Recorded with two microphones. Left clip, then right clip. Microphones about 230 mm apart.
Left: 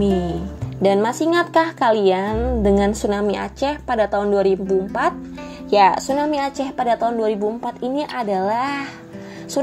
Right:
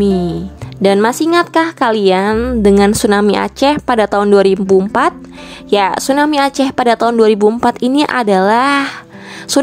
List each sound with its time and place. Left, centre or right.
0.8 s speech: right